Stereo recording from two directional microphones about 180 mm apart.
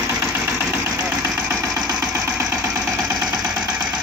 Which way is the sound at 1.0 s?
10° right (ahead or behind).